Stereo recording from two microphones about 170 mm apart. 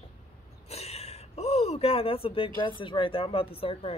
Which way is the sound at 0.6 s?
35° left (ahead or behind).